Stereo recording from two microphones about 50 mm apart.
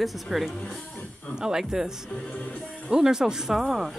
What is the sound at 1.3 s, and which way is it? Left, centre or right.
Speech, centre.